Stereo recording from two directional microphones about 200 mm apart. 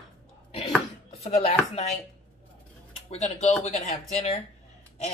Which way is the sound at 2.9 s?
30° left (ahead or behind).